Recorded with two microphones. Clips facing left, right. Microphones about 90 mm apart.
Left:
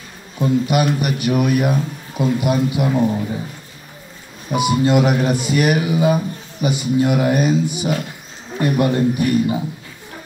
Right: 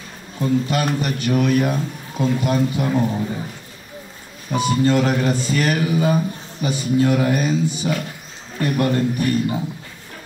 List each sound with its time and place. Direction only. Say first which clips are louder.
0.4 s speech: left 3 dB; 15° left (ahead or behind)
4.5 s speech: left 2 dB; 15° left (ahead or behind)